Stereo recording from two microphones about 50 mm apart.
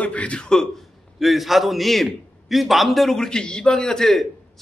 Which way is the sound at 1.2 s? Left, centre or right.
Centre.